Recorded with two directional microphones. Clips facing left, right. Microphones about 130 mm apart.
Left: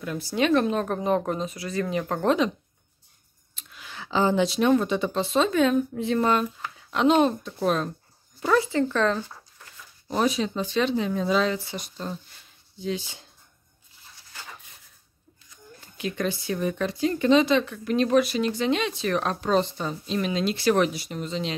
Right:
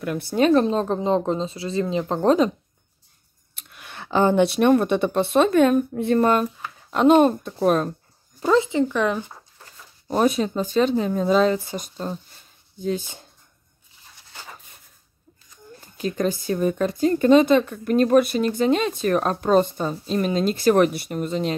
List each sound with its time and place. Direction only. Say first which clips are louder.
0.0 s a woman's voice: right 5 dB; 60° right (ahead or behind)
0.4 s speech: right 4 dB; 35° right (ahead or behind)
2.2 s speech: right 5 dB; 40° right (ahead or behind)
3.5 s a woman's voice: right 2 dB; 60° right (ahead or behind)
8.4 s speech: right 3 dB; 20° right (ahead or behind)
10.0 s a woman's voice: right 4 dB; 50° right (ahead or behind)
16.0 s a woman's voice: right 4 dB; 40° right (ahead or behind)